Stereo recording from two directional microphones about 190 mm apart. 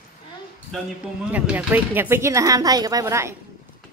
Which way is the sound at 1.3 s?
10° right (ahead or behind).